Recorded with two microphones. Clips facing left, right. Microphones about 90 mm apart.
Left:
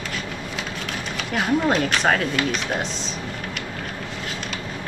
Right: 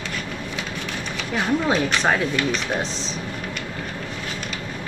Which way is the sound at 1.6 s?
5° right (ahead or behind).